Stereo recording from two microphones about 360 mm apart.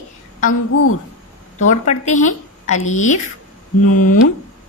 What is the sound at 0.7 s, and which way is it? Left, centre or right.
Speech, left.